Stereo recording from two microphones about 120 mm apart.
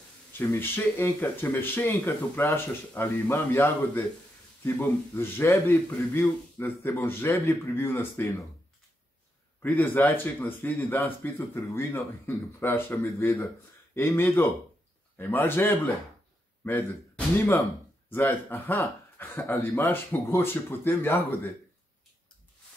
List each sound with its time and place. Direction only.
0.4 s a man's voice: 20° left (ahead or behind)
9.6 s a man's voice: 15° left (ahead or behind)
18.1 s a man's voice: 20° left (ahead or behind)